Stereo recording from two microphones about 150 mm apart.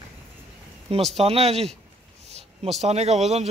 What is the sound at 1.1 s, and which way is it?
Speech, 40° right (ahead or behind).